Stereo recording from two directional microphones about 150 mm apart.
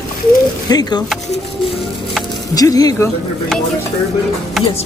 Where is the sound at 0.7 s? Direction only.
25° left (ahead or behind).